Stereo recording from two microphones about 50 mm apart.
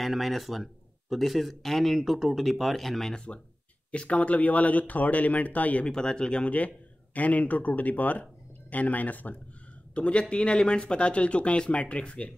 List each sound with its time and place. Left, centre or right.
0.0 s speech: centre
3.9 s speech: left
5.9 s speech: centre